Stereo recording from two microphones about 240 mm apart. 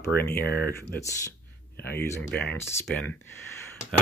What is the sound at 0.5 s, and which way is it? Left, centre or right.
Speech, left.